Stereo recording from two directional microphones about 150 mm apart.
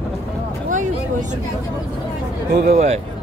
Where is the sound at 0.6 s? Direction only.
60° right (ahead or behind).